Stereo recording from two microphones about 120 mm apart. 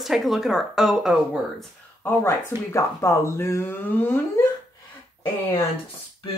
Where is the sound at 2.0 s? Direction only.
25° left (ahead or behind).